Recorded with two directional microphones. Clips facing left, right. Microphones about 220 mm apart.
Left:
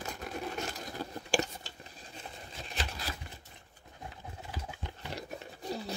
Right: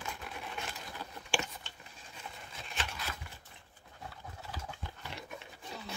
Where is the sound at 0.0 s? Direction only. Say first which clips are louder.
Left 5 dB; 40° left (ahead or behind).